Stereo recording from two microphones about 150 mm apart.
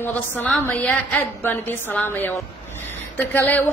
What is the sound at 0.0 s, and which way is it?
A woman's voice, 10° left (ahead or behind).